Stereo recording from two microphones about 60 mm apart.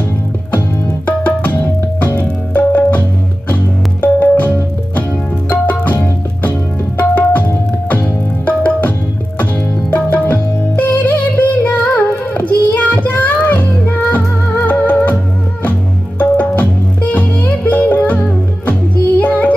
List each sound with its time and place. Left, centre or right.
0.8 s music: left
7.0 s tabla: left
9.4 s music: left
16.2 s music: left